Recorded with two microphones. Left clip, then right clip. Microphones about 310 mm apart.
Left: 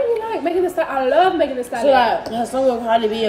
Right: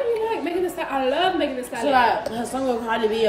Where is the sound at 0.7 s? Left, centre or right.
Centre.